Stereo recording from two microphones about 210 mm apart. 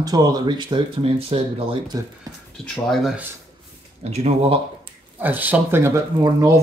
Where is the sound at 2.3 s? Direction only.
15° right (ahead or behind).